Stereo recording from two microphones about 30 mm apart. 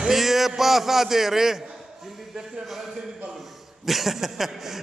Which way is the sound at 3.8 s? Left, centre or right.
Centre.